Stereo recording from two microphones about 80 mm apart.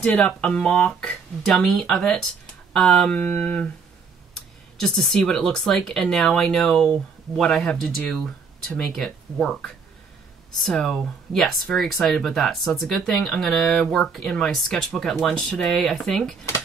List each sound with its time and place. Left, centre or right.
0.0 s speech: centre
1.5 s speech: centre
3.2 s speech: left
4.7 s speech: centre